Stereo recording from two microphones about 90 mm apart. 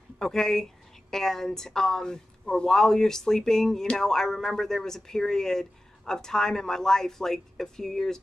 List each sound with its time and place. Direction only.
0.2 s speech: 5° left (ahead or behind)